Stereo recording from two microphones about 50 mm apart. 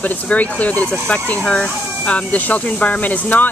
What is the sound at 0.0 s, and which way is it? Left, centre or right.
Speech, left.